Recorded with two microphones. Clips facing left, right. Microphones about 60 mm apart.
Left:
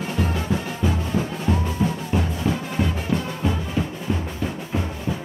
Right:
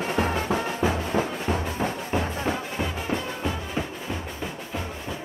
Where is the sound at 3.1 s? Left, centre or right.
Right.